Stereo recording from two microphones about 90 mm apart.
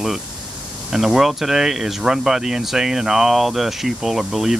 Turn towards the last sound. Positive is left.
turn(degrees=-5)  # may be behind; listen again after turning